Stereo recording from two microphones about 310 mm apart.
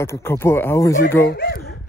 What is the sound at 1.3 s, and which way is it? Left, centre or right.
Speech, left.